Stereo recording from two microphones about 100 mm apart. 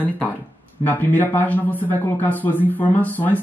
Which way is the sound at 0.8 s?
20° left (ahead or behind).